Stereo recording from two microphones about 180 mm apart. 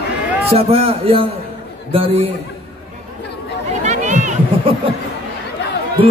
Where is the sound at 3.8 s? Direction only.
40° right (ahead or behind).